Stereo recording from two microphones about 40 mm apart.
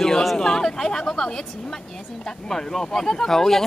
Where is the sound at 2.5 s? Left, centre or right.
Centre.